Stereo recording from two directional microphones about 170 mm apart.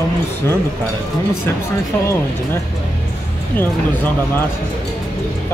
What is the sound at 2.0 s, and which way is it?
Speech, 15° left (ahead or behind).